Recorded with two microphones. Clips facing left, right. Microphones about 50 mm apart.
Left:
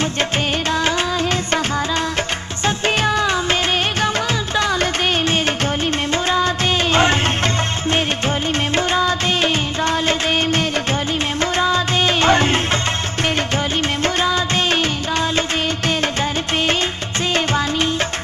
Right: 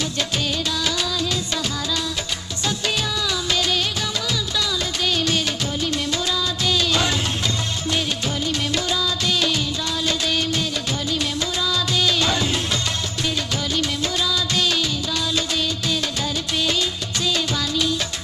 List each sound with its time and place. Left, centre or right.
0.7 s music: left
2.6 s music: left
4.6 s music: left
8.7 s music of bollywood: left
11.5 s music: left
14.0 s music: left
17.3 s music: left